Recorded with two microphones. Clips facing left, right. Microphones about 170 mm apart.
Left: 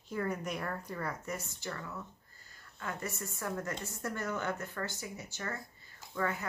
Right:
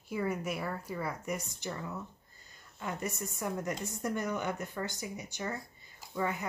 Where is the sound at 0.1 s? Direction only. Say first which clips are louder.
Right 2 dB; 10° right (ahead or behind).